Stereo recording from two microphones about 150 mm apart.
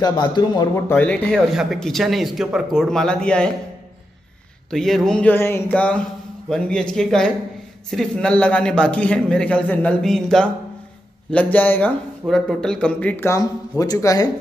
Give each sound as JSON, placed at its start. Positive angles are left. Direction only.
{"t": 0.0, "sound": "speech", "side_deg": 25}
{"t": 0.7, "sound": "speech", "side_deg": 15}
{"t": 1.5, "sound": "speech", "side_deg": 0}
{"t": 4.6, "sound": "speech", "side_deg": 0}